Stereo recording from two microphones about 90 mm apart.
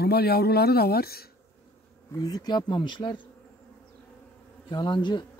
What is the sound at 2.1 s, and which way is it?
Speech, 45° left (ahead or behind).